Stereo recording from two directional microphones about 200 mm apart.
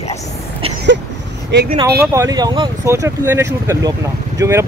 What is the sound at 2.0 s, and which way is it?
Speech, 15° right (ahead or behind).